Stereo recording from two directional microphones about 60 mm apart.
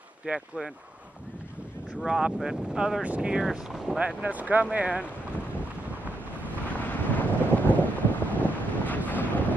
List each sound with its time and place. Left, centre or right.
0.3 s speech: right
2.0 s speech: centre
4.2 s speech: right
6.7 s wind noise: left